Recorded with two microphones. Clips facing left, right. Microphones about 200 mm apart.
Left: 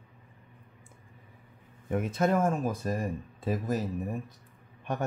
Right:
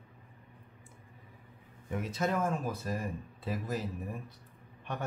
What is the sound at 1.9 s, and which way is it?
Speech, 55° left (ahead or behind).